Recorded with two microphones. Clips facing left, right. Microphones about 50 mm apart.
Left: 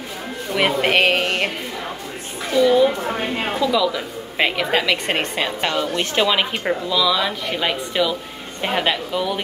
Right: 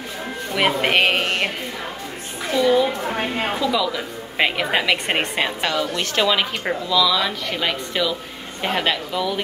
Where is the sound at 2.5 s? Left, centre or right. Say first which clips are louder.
Left 3 dB; centre.